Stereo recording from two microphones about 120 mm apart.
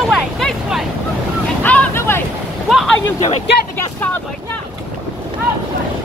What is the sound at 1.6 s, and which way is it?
Boat, 15° left (ahead or behind).